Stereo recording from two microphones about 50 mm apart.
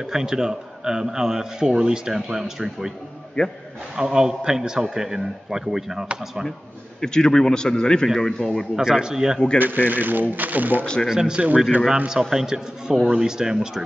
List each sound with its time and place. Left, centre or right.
0.0 s a man's voice: centre
3.4 s a man's voice: left
3.9 s a man's voice: centre
7.0 s a man's voice: centre
8.7 s a man's voice: centre
9.6 s speech: right
11.1 s a man's voice: centre